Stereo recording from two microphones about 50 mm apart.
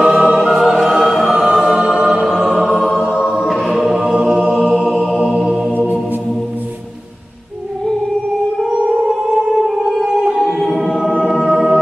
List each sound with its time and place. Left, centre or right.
0.0 s music: centre
0.7 s choir: centre
2.0 s choir: centre
2.4 s music: centre
3.2 s music: centre
3.7 s choir: centre
4.1 s music: centre
4.6 s music: right
8.6 s music: centre
9.0 s a sound: centre
10.4 s music: centre